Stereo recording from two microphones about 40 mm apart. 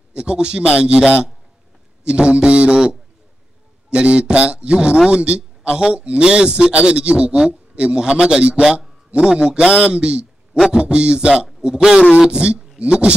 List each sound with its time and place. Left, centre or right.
0.1 s a man's voice: right
3.9 s a man's voice: right
12.3 s a man's voice: right